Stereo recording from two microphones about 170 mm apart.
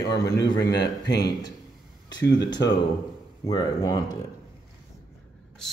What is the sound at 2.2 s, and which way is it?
Speech, 90° left.